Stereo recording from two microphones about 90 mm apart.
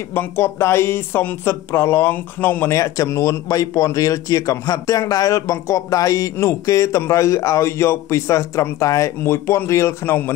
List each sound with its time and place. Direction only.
0.1 s speech: 25° left (ahead or behind)
2.7 s a man's voice: 35° left (ahead or behind)